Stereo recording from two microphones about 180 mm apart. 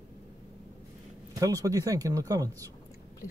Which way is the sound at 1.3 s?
20° right (ahead or behind).